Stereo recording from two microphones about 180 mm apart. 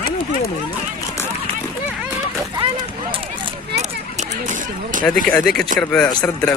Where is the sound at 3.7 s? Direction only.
40° right (ahead or behind).